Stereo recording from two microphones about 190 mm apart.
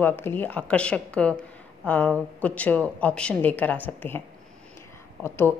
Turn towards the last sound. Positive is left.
turn(degrees=10)  # may be behind; listen again after turning